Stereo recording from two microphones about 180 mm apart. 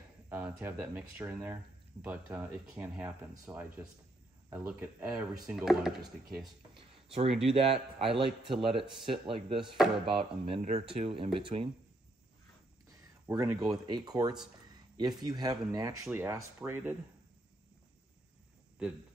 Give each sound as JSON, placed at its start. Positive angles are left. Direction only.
{"t": 0.3, "sound": "speech", "side_deg": -10}
{"t": 7.1, "sound": "a man's voice", "side_deg": -35}
{"t": 9.6, "sound": "speech", "side_deg": 0}
{"t": 10.4, "sound": "a man's voice", "side_deg": -35}
{"t": 13.4, "sound": "a man's voice", "side_deg": -15}